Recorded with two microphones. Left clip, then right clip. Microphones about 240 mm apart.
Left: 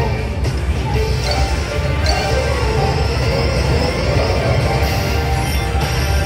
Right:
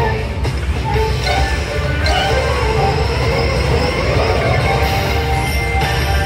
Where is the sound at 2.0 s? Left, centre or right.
Right.